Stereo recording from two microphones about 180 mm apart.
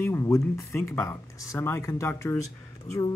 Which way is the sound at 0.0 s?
15° left (ahead or behind).